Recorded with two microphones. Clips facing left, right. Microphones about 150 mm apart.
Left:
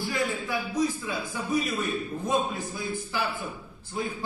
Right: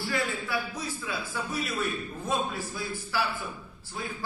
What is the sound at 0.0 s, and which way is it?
A man's voice, 15° left (ahead or behind).